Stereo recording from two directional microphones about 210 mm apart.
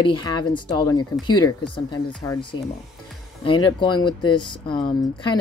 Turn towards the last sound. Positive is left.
turn(degrees=20)  # may be behind; listen again after turning